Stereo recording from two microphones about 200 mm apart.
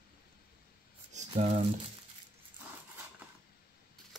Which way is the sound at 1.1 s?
35° right (ahead or behind).